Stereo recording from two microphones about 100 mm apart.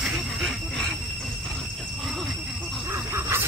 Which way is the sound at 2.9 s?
25° right (ahead or behind).